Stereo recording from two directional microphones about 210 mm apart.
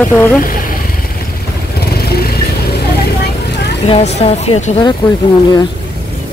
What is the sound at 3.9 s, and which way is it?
Speech, 30° left (ahead or behind).